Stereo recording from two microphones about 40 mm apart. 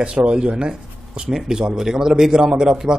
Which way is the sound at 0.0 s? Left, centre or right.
Right.